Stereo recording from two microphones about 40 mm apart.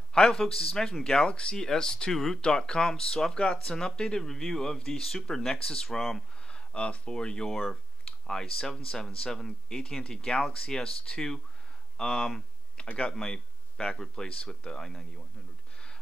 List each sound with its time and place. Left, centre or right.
0.3 s speech: centre
2.1 s speech: centre
2.4 s speech: left
6.4 s speech: left
14.8 s speech: centre